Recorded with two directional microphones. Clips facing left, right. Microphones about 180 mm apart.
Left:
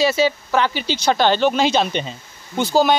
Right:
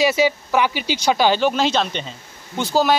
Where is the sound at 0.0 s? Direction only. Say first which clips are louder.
Even; 15° right (ahead or behind).